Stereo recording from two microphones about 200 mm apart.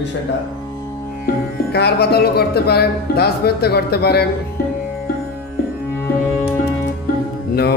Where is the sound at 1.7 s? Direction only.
55° left (ahead or behind).